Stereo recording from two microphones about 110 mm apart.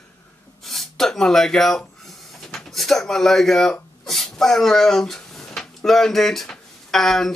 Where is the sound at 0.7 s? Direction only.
5° left (ahead or behind).